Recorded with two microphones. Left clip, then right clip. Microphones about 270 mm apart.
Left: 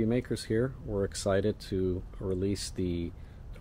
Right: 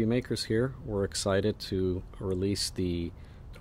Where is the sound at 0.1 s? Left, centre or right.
Centre.